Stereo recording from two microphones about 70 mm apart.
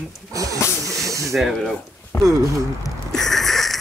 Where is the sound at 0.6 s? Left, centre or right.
Left.